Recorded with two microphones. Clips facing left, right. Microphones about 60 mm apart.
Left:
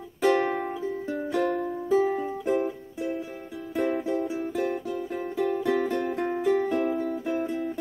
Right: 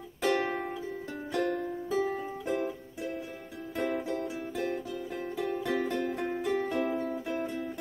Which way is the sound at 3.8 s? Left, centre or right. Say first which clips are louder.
Left 5 dB; centre.